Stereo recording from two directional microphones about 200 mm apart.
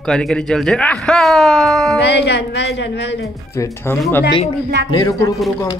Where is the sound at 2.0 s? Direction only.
55° left (ahead or behind).